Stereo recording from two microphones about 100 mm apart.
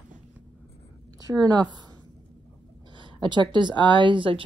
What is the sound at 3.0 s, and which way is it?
Speech, 50° right (ahead or behind).